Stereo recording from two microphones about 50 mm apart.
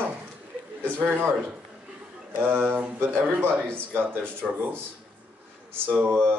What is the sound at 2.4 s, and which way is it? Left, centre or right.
Speech, right.